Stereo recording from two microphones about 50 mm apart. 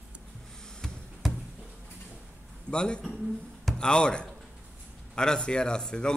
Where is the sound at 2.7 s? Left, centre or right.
Centre.